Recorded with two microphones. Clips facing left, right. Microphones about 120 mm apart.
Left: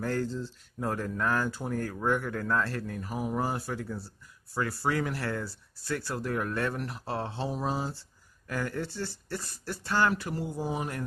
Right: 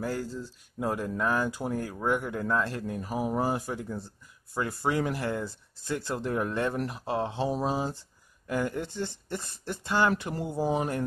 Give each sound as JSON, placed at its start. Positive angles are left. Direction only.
{"t": 0.0, "sound": "speech", "side_deg": -10}